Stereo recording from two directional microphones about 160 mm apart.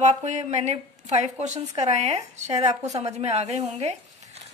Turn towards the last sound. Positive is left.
turn(degrees=-40)  # may be behind; listen again after turning